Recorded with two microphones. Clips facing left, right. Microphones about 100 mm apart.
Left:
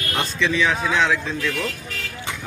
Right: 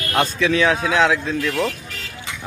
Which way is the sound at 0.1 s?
50° right (ahead or behind).